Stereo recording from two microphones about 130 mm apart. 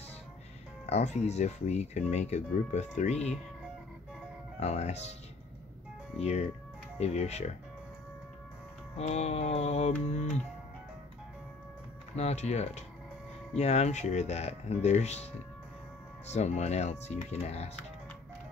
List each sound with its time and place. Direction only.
0.8 s speech: 55° left (ahead or behind)
4.6 s speech: 55° left (ahead or behind)
6.1 s speech: 55° left (ahead or behind)
8.9 s speech: 55° left (ahead or behind)
12.2 s speech: 55° left (ahead or behind)
16.3 s speech: 60° left (ahead or behind)